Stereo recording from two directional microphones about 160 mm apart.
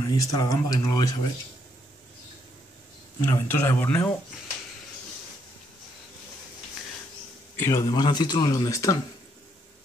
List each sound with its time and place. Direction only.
0.0 s speech: 20° left (ahead or behind)
3.2 s speech: 15° left (ahead or behind)
7.5 s a man's voice: 15° left (ahead or behind)
7.8 s speech: 25° left (ahead or behind)